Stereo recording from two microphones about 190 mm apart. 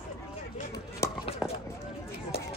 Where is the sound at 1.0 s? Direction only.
15° left (ahead or behind).